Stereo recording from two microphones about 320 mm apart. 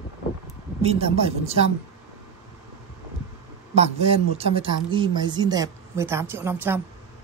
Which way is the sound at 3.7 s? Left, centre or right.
Centre.